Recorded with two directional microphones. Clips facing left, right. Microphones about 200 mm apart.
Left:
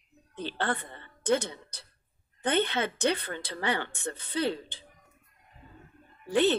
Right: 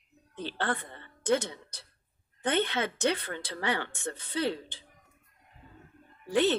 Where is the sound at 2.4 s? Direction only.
30° left (ahead or behind).